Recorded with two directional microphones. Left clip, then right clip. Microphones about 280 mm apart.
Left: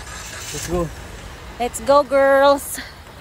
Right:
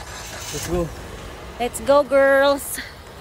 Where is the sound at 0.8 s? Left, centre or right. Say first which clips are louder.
Even; right.